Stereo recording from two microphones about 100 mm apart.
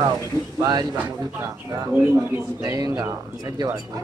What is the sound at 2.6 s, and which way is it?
Speech, 40° right (ahead or behind).